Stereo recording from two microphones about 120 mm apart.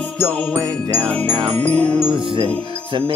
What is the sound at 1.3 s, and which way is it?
Music, 45° right (ahead or behind).